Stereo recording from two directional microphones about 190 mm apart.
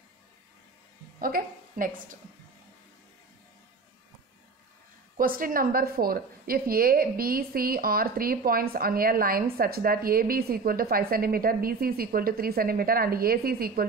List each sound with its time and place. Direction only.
1.2 s a woman's voice: 45° right (ahead or behind)
5.1 s a woman's voice: 45° right (ahead or behind)